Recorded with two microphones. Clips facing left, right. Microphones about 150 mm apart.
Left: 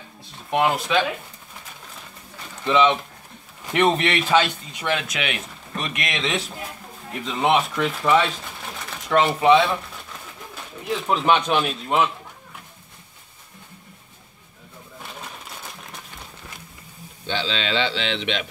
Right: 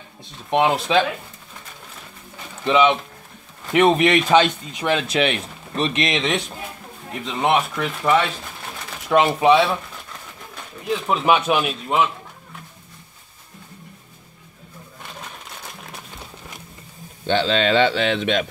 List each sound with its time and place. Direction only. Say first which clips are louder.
0.5 s speech: right 3 dB; 20° right (ahead or behind)
2.6 s speech: right 2 dB; 15° right (ahead or behind)
6.2 s speech: right 3 dB; centre (ahead or behind)
9.1 s speech: right 2 dB; 15° right (ahead or behind)
9.5 s speech: even; 5° right (ahead or behind)
11.1 s speech: right 1 dB; 10° right (ahead or behind)
17.3 s speech: right 7 dB; 50° right (ahead or behind)